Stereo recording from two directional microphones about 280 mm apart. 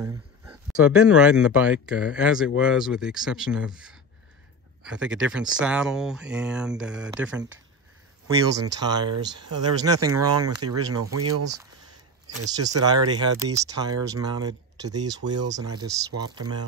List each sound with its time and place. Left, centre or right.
0.0 s speech: centre
8.5 s speech: centre
10.6 s speech: right
12.4 s speech: centre